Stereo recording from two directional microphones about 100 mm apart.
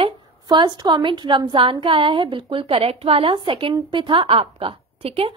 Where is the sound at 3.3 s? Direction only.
60° right (ahead or behind); by 5.3 s 75° right (ahead or behind).